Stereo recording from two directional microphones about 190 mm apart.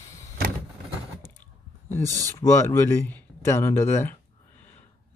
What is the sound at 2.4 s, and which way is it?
Speech, 15° left (ahead or behind).